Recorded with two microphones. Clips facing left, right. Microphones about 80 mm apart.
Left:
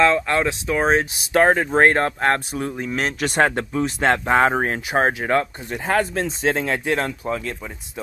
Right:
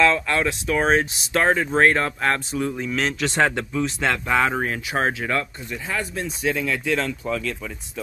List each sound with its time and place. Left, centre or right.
0.0 s speech: left
0.7 s speech: centre
1.3 s speech: left
3.4 s speech: left
5.7 s speech: left
6.2 s speech: left
6.9 s speech: left
7.2 s speech: left